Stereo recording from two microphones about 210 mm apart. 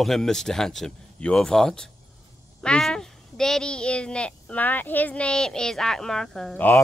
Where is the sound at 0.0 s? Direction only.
Centre (ahead or behind).